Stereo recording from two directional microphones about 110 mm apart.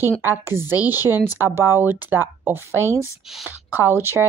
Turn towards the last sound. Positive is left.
turn(degrees=-20)  # may be behind; listen again after turning